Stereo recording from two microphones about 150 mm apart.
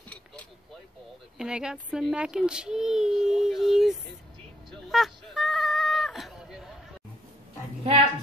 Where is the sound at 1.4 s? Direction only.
5° right (ahead or behind).